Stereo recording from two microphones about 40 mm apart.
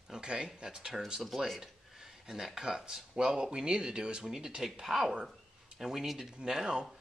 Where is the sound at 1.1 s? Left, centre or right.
Centre.